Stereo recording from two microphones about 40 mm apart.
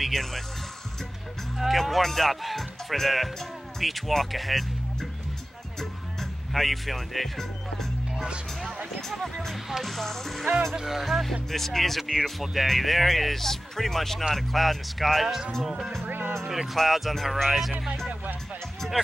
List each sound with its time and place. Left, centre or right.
0.0 s speech: centre
1.6 s speech: centre
5.8 s music: centre
9.1 s speech: centre
9.9 s speech: centre
10.8 s speech: centre
12.0 s speech: centre
16.1 s music: right
16.7 s speech: centre